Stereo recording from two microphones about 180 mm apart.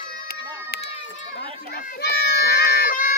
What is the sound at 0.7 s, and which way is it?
Run, 35° left (ahead or behind).